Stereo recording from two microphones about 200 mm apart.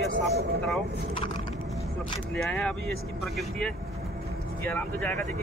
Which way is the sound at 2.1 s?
Centre (ahead or behind).